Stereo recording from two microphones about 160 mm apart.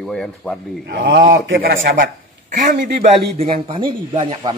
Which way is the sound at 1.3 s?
80° right.